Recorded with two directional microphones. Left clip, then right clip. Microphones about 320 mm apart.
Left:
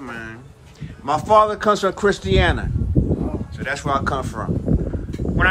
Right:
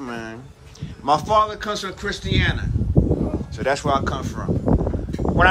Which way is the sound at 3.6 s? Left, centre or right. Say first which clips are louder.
Right 2 dB; centre.